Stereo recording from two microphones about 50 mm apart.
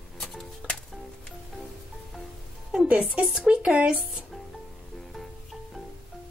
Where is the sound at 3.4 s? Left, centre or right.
Right.